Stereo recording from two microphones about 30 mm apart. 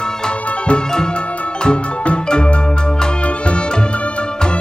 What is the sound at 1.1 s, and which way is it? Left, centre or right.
Music, left.